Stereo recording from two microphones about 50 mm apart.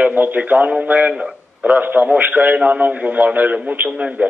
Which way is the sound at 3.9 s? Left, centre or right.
Right.